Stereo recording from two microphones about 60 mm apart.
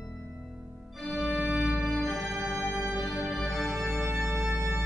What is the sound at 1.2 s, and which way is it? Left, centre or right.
Organ, right.